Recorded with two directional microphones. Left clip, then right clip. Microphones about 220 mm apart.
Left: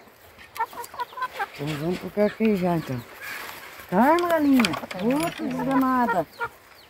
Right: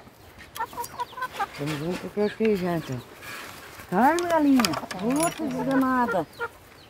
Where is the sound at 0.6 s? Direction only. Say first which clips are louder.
Left 2 dB; 10° left (ahead or behind).